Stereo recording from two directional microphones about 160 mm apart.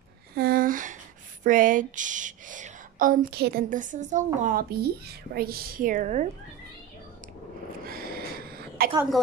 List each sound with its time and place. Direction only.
0.4 s a woman's voice: 65° right (ahead or behind)
3.7 s a woman's voice: 55° right (ahead or behind)
7.8 s a sound: 70° right (ahead or behind)